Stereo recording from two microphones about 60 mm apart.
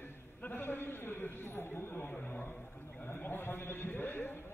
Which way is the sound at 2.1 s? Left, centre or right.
Left.